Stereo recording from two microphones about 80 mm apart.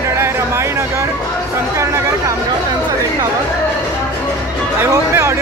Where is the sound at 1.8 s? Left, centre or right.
Right.